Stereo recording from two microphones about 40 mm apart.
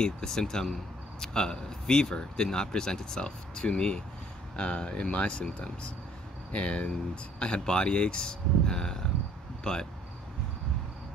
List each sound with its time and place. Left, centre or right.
0.0 s a man's voice: centre